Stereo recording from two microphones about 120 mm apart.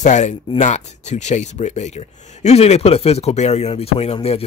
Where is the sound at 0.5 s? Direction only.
75° left (ahead or behind).